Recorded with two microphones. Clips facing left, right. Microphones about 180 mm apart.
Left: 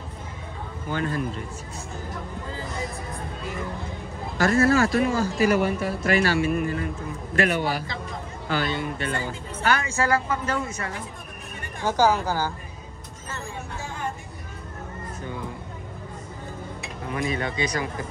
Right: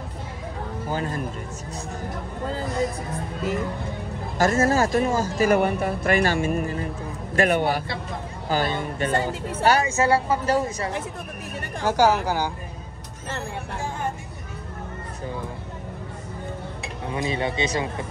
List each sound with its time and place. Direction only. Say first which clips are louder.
0.8 s speech: even; 35° right (ahead or behind)
4.4 s speech: even; 45° right (ahead or behind)
7.3 s a man's voice: right 3 dB; 55° right (ahead or behind)
8.5 s speech: right 2 dB; 40° right (ahead or behind)
11.8 s speech: right 2 dB; 10° right (ahead or behind)
17.1 s speech: right 2 dB; 25° right (ahead or behind)